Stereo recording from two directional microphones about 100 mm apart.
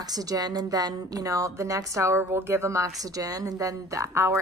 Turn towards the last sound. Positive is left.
turn(degrees=-30)  # may be behind; listen again after turning